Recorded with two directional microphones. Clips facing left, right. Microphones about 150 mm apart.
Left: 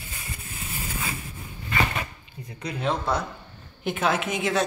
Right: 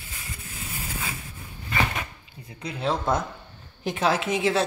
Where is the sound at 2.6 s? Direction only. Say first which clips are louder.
Even; 25° right (ahead or behind).